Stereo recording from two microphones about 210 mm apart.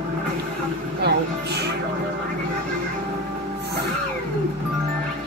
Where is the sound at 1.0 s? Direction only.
50° right (ahead or behind).